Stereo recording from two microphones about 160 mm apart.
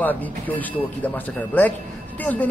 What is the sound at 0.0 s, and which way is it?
A man's voice, 10° left (ahead or behind).